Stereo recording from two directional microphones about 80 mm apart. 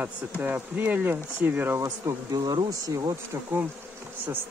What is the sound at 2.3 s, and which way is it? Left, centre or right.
Bee, right.